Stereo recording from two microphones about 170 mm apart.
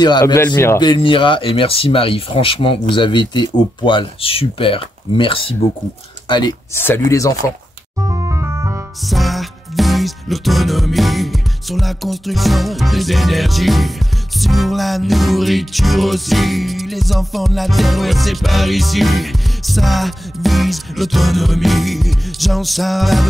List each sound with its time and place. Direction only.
0.0 s speech: 25° left (ahead or behind)
6.7 s speech: 15° left (ahead or behind)
8.1 s music: 15° right (ahead or behind)
9.0 s music: centre (ahead or behind)